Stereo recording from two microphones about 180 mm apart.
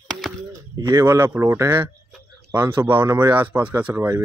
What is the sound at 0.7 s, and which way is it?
Speech, 20° right (ahead or behind).